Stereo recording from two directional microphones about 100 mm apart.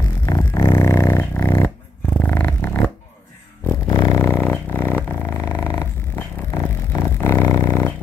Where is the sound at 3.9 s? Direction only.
45° left (ahead or behind).